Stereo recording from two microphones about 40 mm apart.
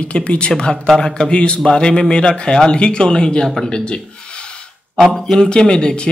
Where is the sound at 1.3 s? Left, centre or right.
Left.